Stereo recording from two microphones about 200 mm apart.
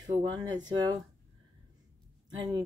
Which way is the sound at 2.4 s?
20° right (ahead or behind).